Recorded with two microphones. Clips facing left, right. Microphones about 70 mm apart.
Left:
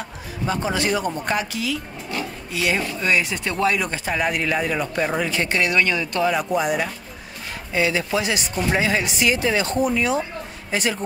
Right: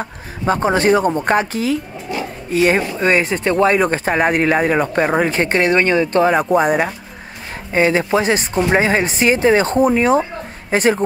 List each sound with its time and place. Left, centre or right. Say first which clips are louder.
0.0 s a woman's voice: right 6 dB; right